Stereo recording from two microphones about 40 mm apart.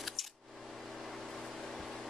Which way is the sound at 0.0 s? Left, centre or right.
Centre.